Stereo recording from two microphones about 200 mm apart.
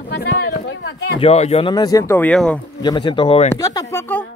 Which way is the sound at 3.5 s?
15° left (ahead or behind).